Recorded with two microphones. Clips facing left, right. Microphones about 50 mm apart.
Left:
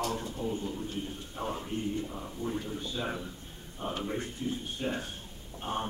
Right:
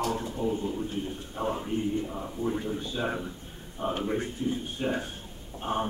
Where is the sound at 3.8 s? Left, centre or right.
Centre.